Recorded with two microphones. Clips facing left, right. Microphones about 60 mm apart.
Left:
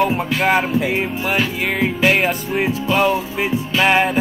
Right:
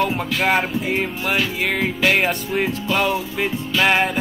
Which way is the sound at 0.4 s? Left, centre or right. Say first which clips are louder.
Left 3 dB; centre.